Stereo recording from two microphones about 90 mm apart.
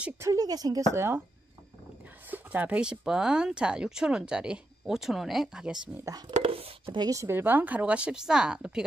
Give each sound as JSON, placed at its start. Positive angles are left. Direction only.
{"t": 0.2, "sound": "speech", "side_deg": -40}
{"t": 0.9, "sound": "speech", "side_deg": -30}
{"t": 2.2, "sound": "a sound", "side_deg": -20}
{"t": 3.0, "sound": "speech", "side_deg": -5}
{"t": 6.0, "sound": "speech", "side_deg": -45}
{"t": 6.4, "sound": "speech", "side_deg": -90}
{"t": 7.0, "sound": "a woman's voice", "side_deg": -40}
{"t": 7.2, "sound": "speech", "side_deg": -25}